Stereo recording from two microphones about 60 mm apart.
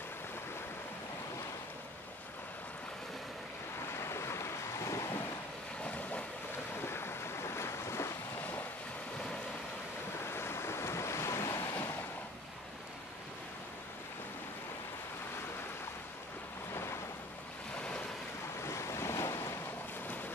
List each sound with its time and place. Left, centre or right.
4.0 s waves: left
6.8 s boat: left
8.4 s waves: left
10.1 s waves: left
16.7 s waves: left
18.6 s waves: left